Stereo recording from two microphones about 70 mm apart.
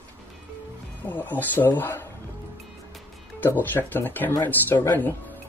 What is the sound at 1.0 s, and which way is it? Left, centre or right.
Speech, left.